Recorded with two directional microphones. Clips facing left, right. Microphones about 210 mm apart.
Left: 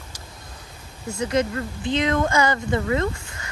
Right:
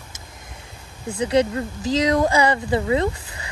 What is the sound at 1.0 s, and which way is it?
Speech, 30° right (ahead or behind).